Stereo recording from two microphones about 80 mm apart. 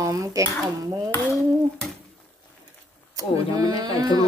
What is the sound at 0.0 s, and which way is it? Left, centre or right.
Dishes, right.